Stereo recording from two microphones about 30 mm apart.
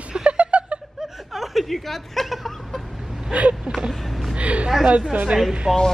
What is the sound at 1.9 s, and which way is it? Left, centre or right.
Speech, centre.